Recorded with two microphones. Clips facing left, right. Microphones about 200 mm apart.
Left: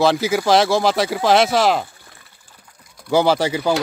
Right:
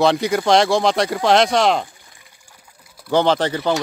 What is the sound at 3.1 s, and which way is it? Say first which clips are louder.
Speech: left 1 dB; 10° left (ahead or behind).